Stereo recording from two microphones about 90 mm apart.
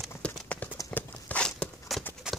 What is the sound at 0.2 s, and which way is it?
Clip-clop, 15° left (ahead or behind).